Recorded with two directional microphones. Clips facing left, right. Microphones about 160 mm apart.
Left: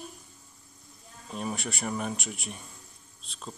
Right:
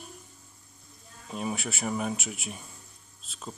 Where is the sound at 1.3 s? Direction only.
5° right (ahead or behind).